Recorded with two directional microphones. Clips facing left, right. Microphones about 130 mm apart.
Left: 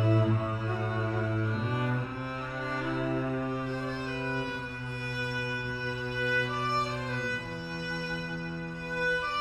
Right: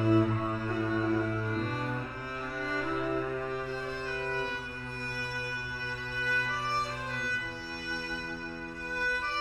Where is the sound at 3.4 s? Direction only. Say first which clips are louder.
Left 2 dB; 15° left (ahead or behind).